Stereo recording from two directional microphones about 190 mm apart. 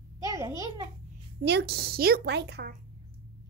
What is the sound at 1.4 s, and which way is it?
A woman's voice, 60° right (ahead or behind).